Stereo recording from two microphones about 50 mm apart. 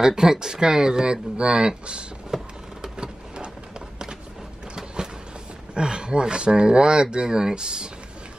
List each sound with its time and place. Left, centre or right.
0.0 s speech: centre
2.3 s a sound: centre
4.7 s vehicle: centre
5.8 s speech: centre